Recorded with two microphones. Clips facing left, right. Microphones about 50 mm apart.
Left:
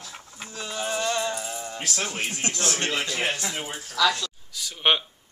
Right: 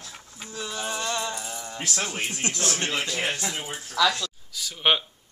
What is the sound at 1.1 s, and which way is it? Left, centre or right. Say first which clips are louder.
Music: left 3 dB; left.